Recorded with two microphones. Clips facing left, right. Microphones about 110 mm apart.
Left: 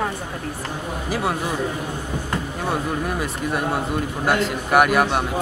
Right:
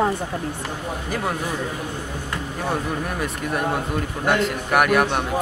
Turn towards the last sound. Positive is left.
turn(degrees=5)  # may be behind; listen again after turning